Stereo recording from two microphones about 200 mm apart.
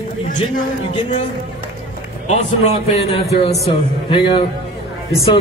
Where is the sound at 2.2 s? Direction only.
35° left (ahead or behind).